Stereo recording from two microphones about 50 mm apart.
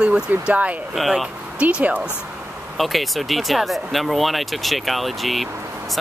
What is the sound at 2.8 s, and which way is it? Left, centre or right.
Speech, centre.